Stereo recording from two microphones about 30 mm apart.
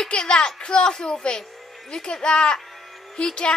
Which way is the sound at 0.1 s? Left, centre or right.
Left.